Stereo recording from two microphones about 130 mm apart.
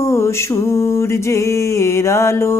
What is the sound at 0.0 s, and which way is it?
Speech, 20° left (ahead or behind).